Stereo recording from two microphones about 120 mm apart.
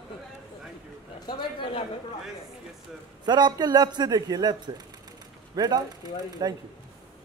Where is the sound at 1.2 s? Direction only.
45° left (ahead or behind).